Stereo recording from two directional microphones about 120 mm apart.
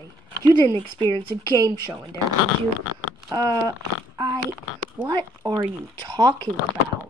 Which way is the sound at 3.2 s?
35° right (ahead or behind).